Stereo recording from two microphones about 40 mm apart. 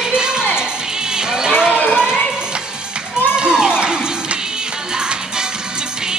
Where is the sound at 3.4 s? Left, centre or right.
Right.